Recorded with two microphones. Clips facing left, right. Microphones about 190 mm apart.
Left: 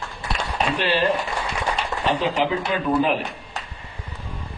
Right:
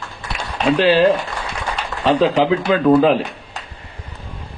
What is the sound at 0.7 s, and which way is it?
Speech, 90° right.